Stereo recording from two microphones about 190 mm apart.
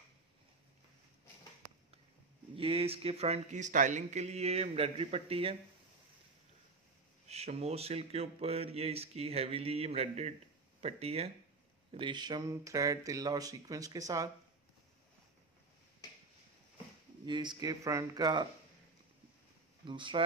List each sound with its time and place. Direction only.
2.5 s a man's voice: 30° right (ahead or behind)
7.2 s a man's voice: 35° right (ahead or behind); by 14.3 s 20° right (ahead or behind)
17.3 s speech: 25° right (ahead or behind)
19.8 s speech: 25° right (ahead or behind)